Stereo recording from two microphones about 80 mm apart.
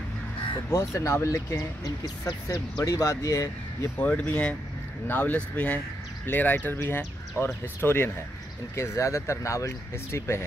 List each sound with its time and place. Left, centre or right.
0.7 s speech: left
2.2 s speech: left
4.0 s speech: centre
8.7 s speech: left